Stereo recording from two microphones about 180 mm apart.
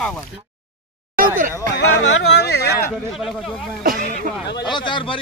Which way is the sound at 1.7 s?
70° left (ahead or behind).